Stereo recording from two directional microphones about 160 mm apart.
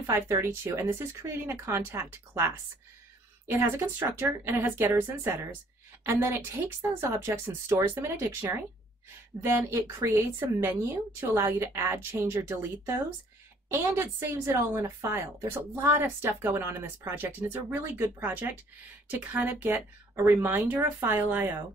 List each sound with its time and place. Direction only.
0.0 s speech: 15° right (ahead or behind)